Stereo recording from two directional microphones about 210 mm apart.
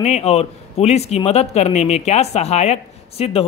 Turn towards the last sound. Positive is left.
turn(degrees=30)  # may be behind; listen again after turning